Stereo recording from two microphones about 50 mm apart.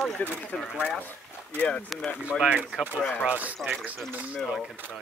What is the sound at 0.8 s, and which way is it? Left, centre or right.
Speech, left.